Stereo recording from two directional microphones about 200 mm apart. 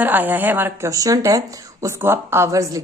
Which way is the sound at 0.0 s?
10° right (ahead or behind).